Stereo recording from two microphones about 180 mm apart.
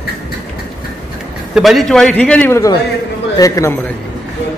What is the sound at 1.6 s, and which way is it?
A man's voice, centre (ahead or behind).